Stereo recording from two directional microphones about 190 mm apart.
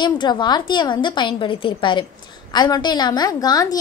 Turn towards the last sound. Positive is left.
turn(degrees=20)  # may be behind; listen again after turning